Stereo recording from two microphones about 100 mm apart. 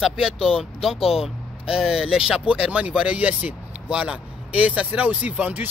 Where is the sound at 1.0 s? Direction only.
80° left.